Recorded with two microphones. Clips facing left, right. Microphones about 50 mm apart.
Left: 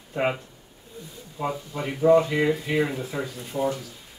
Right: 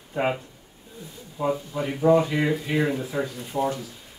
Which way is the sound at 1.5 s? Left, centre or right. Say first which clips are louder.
Right 4 dB; centre.